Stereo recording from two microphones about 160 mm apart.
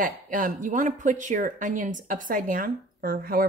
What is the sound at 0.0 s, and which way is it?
Speech, 60° right (ahead or behind).